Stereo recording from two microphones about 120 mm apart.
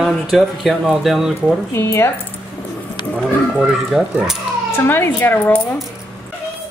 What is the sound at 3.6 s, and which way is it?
Speech, 5° right (ahead or behind).